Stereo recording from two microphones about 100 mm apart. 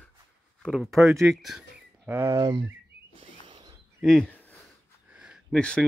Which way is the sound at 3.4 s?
50° right (ahead or behind).